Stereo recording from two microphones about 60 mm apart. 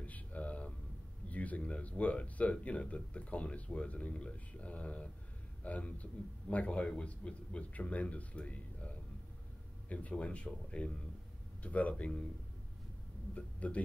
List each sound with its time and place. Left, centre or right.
0.0 s a sound: left
1.3 s speech: left
13.3 s speech: left